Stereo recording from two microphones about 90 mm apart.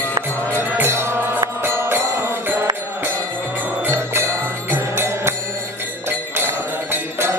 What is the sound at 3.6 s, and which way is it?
Music, 20° right (ahead or behind).